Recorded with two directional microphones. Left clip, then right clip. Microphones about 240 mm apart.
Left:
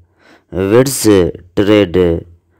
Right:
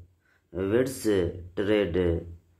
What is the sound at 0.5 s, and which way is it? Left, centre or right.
Speech, left.